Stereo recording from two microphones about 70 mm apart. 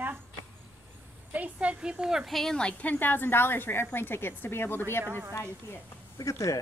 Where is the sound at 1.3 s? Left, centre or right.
Centre.